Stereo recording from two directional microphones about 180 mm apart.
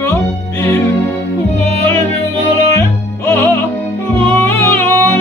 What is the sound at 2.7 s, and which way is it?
Music, 15° left (ahead or behind).